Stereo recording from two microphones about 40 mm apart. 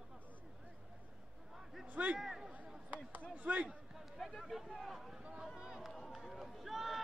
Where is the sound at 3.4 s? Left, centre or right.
Right.